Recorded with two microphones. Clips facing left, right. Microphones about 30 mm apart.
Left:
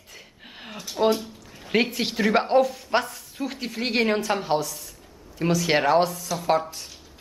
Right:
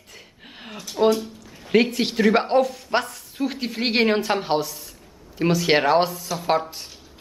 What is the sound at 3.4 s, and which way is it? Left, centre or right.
A woman's voice, centre.